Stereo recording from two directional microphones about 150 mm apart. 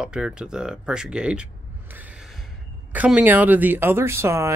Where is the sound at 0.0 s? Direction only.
5° right (ahead or behind).